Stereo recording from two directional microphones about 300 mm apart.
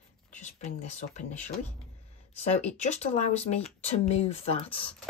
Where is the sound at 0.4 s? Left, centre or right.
Left.